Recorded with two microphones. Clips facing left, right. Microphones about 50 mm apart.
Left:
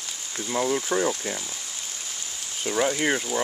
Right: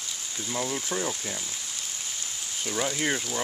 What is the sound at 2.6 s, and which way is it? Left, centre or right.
Speech, centre.